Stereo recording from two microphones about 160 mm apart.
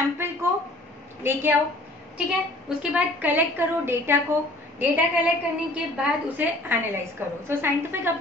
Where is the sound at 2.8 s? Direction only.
10° right (ahead or behind).